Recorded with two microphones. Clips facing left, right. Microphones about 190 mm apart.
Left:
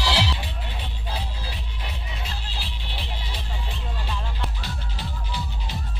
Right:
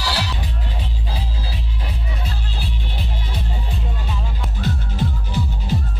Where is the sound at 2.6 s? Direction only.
50° right (ahead or behind).